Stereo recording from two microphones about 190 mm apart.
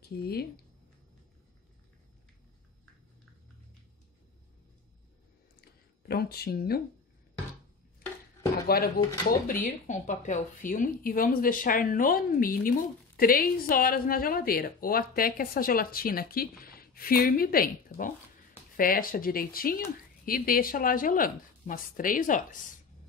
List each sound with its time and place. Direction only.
0.2 s speech: 55° left (ahead or behind)
6.0 s speech: 55° left (ahead or behind)
8.6 s a woman's voice: 55° left (ahead or behind)